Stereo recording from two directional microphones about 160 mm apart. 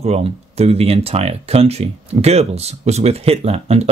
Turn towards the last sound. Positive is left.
turn(degrees=-40)  # may be behind; listen again after turning